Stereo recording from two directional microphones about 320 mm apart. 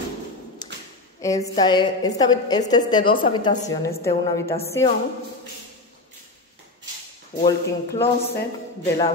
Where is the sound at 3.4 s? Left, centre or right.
Centre.